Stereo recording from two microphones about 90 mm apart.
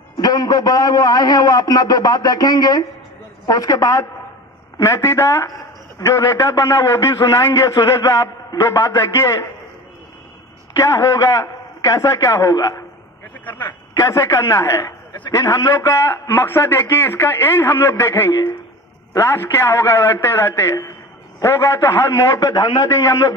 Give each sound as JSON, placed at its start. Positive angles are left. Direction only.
{"t": 0.2, "sound": "a man's voice", "side_deg": 45}
{"t": 10.8, "sound": "a man's voice", "side_deg": 35}
{"t": 14.0, "sound": "a man's voice", "side_deg": 35}